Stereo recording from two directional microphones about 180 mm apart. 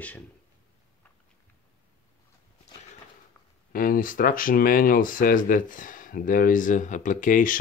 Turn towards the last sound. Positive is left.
turn(degrees=50)  # may be behind; listen again after turning